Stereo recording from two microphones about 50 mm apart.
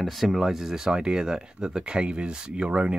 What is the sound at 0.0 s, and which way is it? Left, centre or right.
Speech, centre.